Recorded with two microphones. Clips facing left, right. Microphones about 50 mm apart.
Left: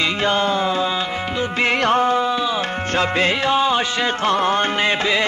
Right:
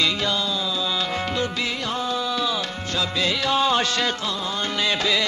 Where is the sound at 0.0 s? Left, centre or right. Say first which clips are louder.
Left 5 dB; left.